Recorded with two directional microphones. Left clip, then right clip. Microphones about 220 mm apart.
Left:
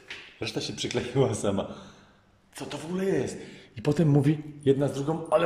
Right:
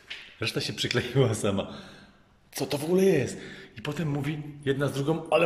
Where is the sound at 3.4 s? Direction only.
10° left (ahead or behind).